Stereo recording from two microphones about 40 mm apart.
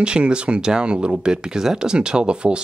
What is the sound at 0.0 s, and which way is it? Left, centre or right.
Speech, right.